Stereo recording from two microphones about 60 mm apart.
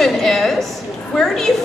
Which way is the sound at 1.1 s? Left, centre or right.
Centre.